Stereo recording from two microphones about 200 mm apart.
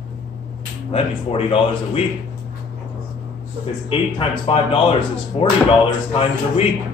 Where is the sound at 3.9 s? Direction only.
25° left (ahead or behind).